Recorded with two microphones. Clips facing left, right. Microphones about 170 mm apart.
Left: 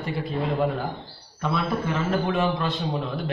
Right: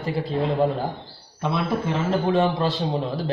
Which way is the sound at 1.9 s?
25° right (ahead or behind).